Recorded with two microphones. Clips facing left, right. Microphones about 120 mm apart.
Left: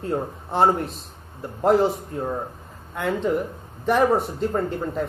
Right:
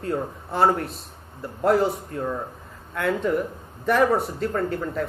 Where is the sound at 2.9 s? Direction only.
15° left (ahead or behind).